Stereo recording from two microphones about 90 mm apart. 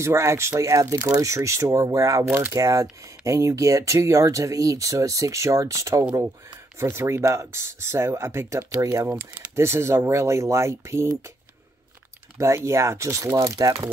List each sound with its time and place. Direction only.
0.0 s speech: 30° right (ahead or behind)
12.4 s speech: 30° right (ahead or behind)